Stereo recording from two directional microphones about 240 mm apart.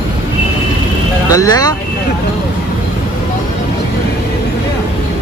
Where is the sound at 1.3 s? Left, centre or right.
Centre.